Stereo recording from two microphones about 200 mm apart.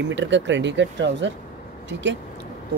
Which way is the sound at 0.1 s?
65° right (ahead or behind).